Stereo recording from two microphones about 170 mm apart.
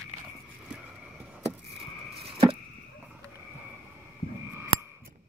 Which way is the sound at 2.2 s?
35° right (ahead or behind).